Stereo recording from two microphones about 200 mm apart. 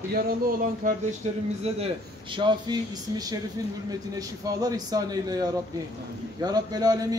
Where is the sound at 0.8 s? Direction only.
40° right (ahead or behind).